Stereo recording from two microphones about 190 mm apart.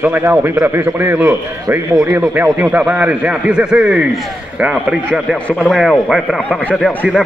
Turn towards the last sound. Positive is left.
turn(degrees=0)  # may be behind; listen again after turning